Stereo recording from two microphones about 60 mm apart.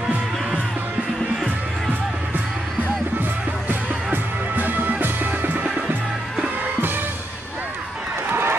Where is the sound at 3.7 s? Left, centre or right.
Right.